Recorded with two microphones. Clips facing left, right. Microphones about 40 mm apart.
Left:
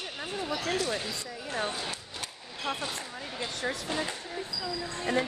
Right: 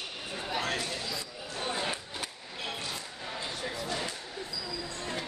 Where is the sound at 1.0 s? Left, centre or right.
Left.